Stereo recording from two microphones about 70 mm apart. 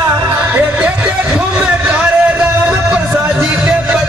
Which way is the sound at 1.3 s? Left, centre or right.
Centre.